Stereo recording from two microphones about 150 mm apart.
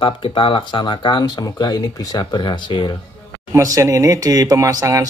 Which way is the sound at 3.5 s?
20° right (ahead or behind).